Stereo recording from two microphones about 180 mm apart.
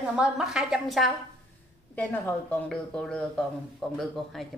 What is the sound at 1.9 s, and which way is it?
A woman's voice, 10° left (ahead or behind).